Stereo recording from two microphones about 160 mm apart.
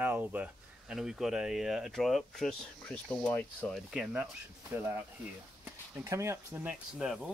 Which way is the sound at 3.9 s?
5° right (ahead or behind).